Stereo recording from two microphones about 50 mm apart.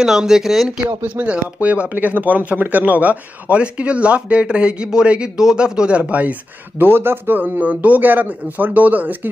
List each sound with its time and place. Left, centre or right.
0.0 s speech: centre
0.8 s speech: right
6.8 s a man's voice: right